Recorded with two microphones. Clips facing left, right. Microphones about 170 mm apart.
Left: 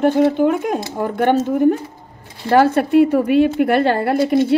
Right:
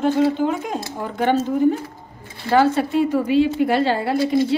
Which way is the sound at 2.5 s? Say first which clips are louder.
Left 4 dB; 60° left (ahead or behind).